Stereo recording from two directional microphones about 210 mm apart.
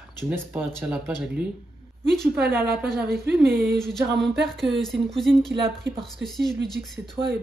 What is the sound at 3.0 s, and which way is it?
Speech, 50° right (ahead or behind).